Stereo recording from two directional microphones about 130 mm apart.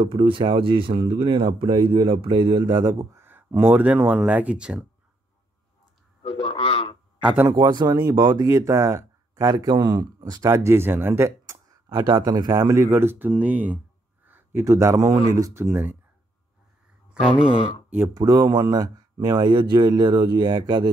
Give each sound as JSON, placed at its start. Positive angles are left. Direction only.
{"t": 0.0, "sound": "speech", "side_deg": -40}
{"t": 6.2, "sound": "speech", "side_deg": 50}
{"t": 7.5, "sound": "speech", "side_deg": -35}
{"t": 11.9, "sound": "speech", "side_deg": -35}
{"t": 15.6, "sound": "speech", "side_deg": -15}
{"t": 17.5, "sound": "speech", "side_deg": 45}
{"t": 17.8, "sound": "speech", "side_deg": -15}
{"t": 18.1, "sound": "speech", "side_deg": -30}